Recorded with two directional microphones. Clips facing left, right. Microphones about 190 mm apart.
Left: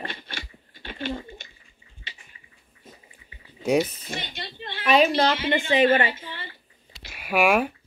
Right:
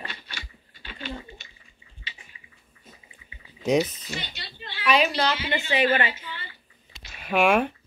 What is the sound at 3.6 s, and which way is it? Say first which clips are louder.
Speech: even; 10° left (ahead or behind).